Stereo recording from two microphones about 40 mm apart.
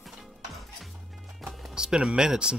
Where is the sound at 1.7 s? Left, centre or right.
Centre.